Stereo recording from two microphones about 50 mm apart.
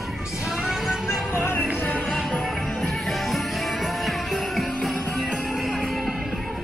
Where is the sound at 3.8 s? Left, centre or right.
Centre.